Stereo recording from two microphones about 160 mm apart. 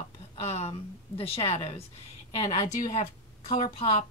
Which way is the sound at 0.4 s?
40° left (ahead or behind).